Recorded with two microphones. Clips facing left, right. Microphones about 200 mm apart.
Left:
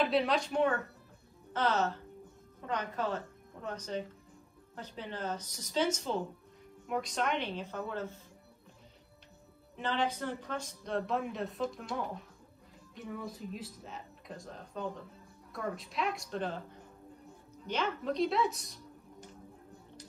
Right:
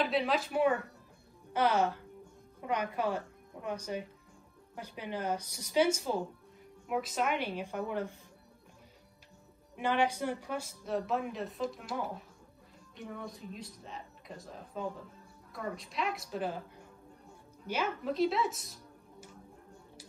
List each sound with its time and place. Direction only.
0.0 s a woman's voice: centre (ahead or behind)
9.8 s speech: 10° right (ahead or behind)